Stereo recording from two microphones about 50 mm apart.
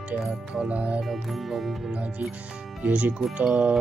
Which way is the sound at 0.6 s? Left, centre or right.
Right.